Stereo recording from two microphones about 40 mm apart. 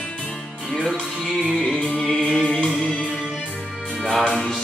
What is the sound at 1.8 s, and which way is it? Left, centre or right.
Music, centre.